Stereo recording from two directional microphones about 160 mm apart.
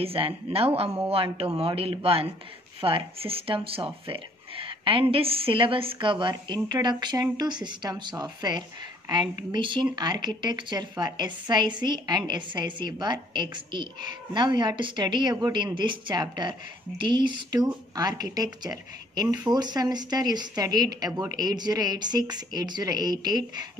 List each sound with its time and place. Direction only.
0.0 s a woman's voice: 35° right (ahead or behind)